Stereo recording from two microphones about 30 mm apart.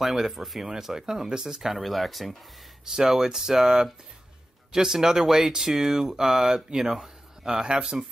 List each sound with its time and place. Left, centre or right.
0.0 s speech: centre
0.7 s speech: centre
1.8 s speech: centre
2.9 s speech: centre